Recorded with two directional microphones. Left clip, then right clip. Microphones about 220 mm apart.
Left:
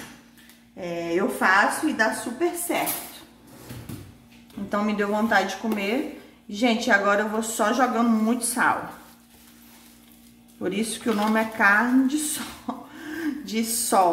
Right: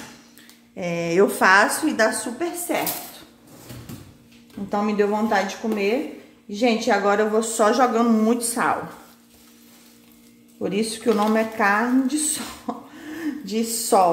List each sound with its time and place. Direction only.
0.7 s speech: 40° right (ahead or behind)
4.6 s a woman's voice: 10° right (ahead or behind)
10.6 s a woman's voice: 15° right (ahead or behind)